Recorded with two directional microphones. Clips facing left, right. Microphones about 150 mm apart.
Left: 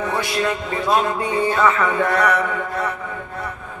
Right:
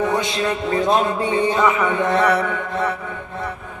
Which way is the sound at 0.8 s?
25° right (ahead or behind).